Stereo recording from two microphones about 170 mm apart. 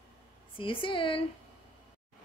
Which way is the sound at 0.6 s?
30° left (ahead or behind).